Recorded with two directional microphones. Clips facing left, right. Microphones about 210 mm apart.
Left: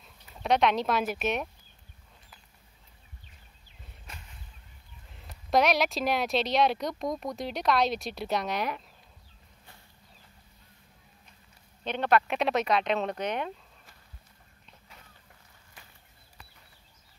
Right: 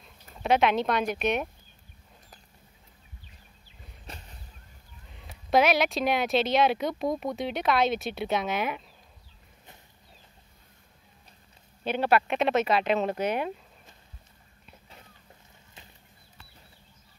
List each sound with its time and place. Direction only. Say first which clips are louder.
0.0 s speech: right 3 dB; centre (ahead or behind)
4.0 s a sound: right 5 dB; 35° right (ahead or behind)
5.2 s speech: right 2 dB; centre (ahead or behind)
11.8 s speech: right 1 dB; 5° right (ahead or behind)